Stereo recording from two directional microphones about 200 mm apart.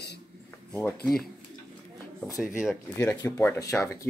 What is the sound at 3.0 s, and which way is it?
Speech, 15° left (ahead or behind).